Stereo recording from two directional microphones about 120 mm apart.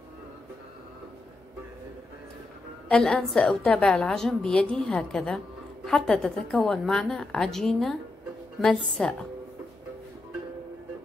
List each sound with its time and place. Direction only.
2.9 s a woman's voice: 5° left (ahead or behind)